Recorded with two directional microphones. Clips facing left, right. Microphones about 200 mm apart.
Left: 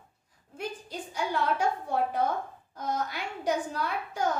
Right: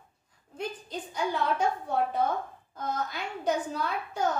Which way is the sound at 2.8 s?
10° left (ahead or behind).